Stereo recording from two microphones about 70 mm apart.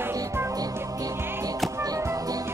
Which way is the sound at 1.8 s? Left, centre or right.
Right.